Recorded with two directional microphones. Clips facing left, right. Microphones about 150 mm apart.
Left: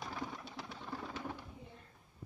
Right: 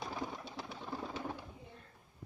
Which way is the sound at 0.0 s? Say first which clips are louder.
Right 2 dB; 20° right (ahead or behind).